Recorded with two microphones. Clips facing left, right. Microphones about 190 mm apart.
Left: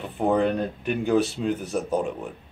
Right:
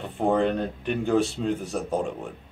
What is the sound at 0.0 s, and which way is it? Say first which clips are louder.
Speech: left 1 dB; centre (ahead or behind).